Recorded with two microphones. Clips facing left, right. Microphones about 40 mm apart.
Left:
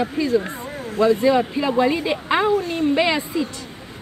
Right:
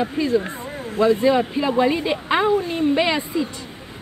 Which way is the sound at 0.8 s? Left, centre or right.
Right.